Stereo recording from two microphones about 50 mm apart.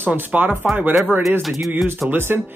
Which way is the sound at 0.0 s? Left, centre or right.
Right.